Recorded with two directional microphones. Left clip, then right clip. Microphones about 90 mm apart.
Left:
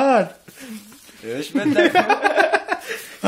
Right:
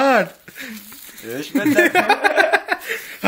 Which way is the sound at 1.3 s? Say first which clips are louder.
Right 1 dB; 10° left (ahead or behind).